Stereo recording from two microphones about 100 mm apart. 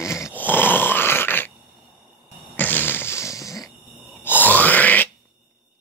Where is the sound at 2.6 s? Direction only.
20° left (ahead or behind).